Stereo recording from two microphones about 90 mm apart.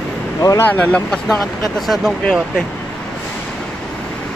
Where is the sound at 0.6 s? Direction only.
15° left (ahead or behind).